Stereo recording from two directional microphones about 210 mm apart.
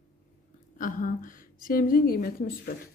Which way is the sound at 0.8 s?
40° left (ahead or behind).